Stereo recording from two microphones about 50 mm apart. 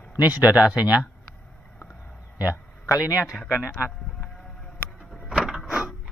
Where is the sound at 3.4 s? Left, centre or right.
Centre.